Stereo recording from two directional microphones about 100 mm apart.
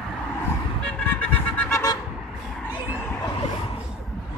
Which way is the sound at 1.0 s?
15° left (ahead or behind).